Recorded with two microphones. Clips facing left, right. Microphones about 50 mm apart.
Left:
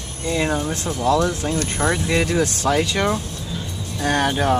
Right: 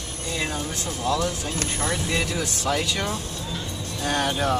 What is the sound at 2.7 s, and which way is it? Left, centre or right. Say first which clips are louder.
Speech: left 5 dB; left.